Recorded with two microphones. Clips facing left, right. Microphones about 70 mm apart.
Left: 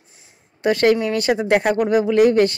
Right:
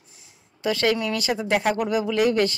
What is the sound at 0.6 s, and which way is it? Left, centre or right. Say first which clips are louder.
Speech: left 6 dB; left.